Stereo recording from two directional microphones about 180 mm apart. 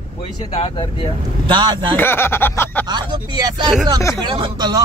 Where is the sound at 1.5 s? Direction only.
25° right (ahead or behind).